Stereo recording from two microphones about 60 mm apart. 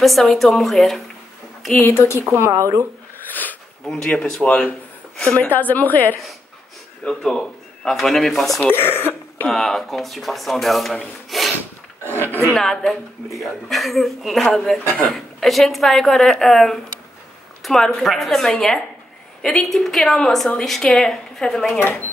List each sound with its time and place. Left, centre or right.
0.0 s a woman's voice: centre
1.8 s speech: left
2.5 s speech: right
3.8 s speech: centre
4.4 s a woman's voice: left
7.1 s a woman's voice: centre
8.6 s speech: left
9.5 s a woman's voice: centre
11.2 s a sound: centre
12.0 s speech: left
12.5 s a woman's voice: centre
21.7 s speech: left